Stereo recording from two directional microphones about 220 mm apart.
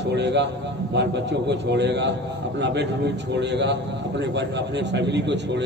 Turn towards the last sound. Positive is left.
turn(degrees=-50)  # may be behind; listen again after turning